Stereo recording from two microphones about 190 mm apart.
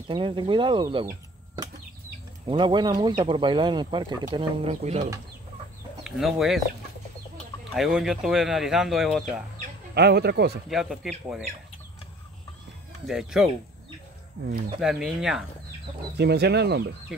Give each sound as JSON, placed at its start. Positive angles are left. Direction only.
{"t": 0.1, "sound": "speech", "side_deg": -25}
{"t": 2.4, "sound": "speech", "side_deg": -25}
{"t": 6.0, "sound": "speech", "side_deg": 0}
{"t": 7.7, "sound": "speech", "side_deg": 0}
{"t": 9.9, "sound": "speech", "side_deg": -60}
{"t": 10.7, "sound": "speech", "side_deg": 0}
{"t": 13.0, "sound": "speech", "side_deg": 0}
{"t": 14.8, "sound": "speech", "side_deg": 0}
{"t": 16.2, "sound": "speech", "side_deg": -60}